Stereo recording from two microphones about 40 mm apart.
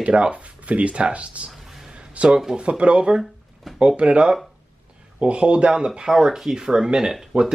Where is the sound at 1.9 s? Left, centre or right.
Right.